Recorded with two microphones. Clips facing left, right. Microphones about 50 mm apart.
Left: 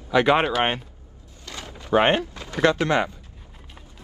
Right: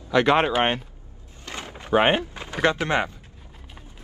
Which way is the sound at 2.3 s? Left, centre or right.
Right.